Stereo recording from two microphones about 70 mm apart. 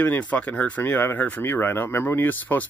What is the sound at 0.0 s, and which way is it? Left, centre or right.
Speech, left.